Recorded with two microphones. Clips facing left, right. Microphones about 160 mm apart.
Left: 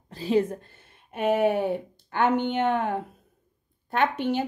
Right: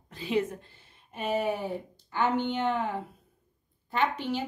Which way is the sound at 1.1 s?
60° left (ahead or behind).